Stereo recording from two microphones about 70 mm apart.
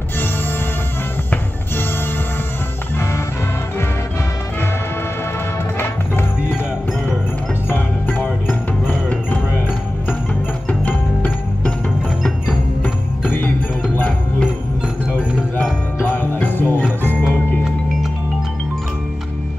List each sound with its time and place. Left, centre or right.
5.8 s music: left
7.7 s music: left
10.7 s music: left
12.8 s music: left
16.0 s jingle bell: left